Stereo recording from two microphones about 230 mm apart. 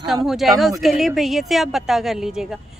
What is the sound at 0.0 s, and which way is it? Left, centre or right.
A woman's voice, centre.